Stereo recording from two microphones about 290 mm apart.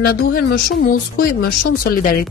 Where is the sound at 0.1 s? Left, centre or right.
Left.